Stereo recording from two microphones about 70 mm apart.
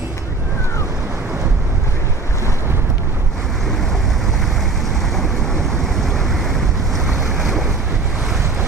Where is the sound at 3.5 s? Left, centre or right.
Centre.